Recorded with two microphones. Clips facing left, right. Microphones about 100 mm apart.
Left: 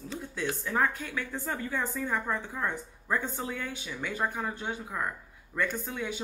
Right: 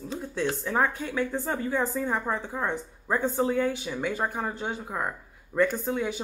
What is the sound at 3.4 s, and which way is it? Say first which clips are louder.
Speech: right 11 dB; 35° right (ahead or behind).